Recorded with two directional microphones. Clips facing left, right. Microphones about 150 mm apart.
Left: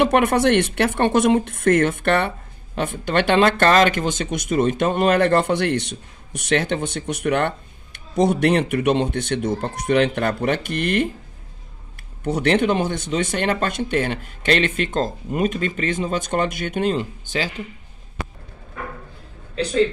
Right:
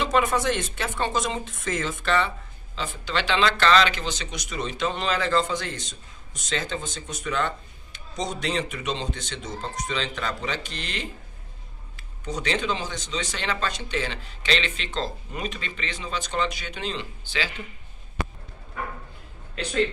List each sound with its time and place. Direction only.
0.0 s speech: 65° left (ahead or behind)
12.2 s speech: 60° left (ahead or behind)